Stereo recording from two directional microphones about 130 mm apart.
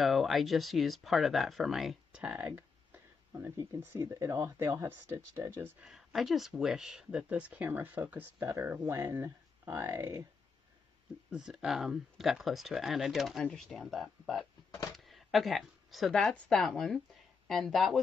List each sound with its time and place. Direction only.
0.0 s speech: centre (ahead or behind); by 5.9 s 15° right (ahead or behind)
5.9 s speech: centre (ahead or behind); by 10.2 s 20° right (ahead or behind)
11.2 s speech: 5° right (ahead or behind)